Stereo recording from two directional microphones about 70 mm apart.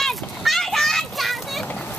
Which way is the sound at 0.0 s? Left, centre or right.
Centre.